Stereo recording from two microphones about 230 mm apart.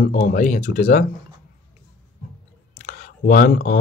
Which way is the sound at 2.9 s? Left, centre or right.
Left.